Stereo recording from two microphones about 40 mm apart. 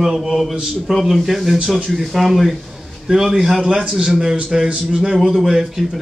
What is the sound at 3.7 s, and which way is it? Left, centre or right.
Speech, centre.